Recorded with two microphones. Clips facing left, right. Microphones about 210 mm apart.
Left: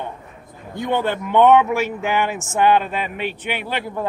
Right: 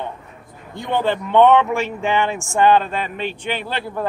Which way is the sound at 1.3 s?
5° left (ahead or behind).